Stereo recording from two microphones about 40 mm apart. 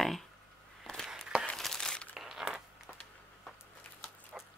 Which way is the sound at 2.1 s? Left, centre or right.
Centre.